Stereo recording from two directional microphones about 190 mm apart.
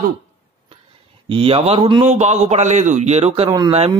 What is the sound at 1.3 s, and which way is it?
Speech, 30° right (ahead or behind).